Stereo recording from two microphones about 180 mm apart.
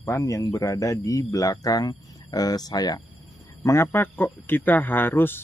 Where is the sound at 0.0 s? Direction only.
15° left (ahead or behind).